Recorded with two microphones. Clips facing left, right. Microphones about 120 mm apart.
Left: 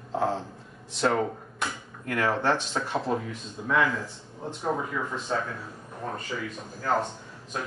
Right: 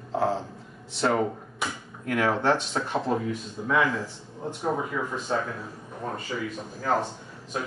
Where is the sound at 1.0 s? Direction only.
5° right (ahead or behind).